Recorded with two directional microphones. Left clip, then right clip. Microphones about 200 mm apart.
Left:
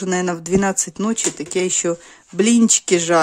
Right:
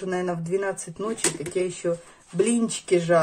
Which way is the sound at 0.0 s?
55° left (ahead or behind).